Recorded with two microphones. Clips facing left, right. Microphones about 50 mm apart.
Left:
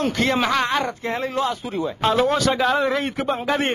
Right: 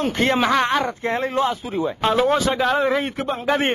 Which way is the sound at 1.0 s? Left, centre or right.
Right.